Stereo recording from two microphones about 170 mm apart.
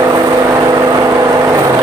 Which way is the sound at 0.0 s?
20° right (ahead or behind).